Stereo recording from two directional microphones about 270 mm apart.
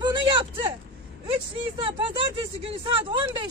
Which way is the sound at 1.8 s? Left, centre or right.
Centre.